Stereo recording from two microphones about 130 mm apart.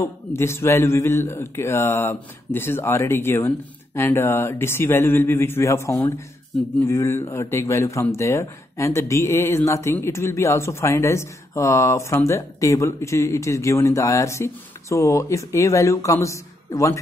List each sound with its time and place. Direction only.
0.0 s speech: 20° left (ahead or behind)